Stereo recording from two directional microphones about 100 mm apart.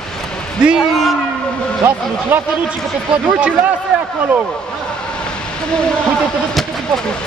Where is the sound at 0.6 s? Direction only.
5° right (ahead or behind).